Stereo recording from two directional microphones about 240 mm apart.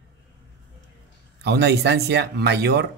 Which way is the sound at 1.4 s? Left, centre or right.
Right.